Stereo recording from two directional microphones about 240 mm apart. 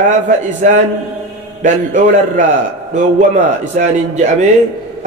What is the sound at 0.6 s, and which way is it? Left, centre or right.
A man's voice, right.